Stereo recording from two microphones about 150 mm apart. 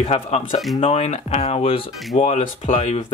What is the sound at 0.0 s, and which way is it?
Speech, 45° left (ahead or behind).